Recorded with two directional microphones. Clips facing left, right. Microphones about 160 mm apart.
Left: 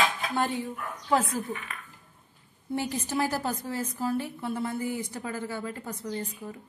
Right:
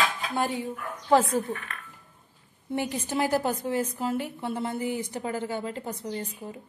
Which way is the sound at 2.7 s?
20° right (ahead or behind).